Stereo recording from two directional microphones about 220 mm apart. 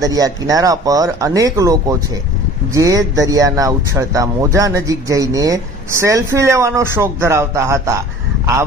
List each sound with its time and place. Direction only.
0.0 s speech: 15° right (ahead or behind)